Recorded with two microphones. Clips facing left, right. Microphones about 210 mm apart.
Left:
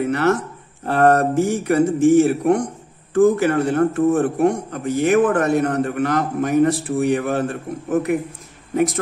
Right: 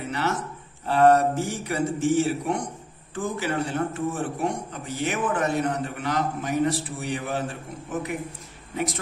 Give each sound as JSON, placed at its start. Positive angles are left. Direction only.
{"t": 0.0, "sound": "a man's voice", "side_deg": 55}